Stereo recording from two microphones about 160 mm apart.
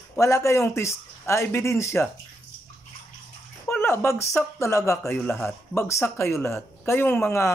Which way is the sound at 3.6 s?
15° left (ahead or behind).